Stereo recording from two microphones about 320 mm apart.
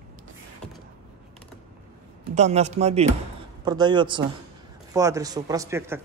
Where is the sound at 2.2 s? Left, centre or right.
Right.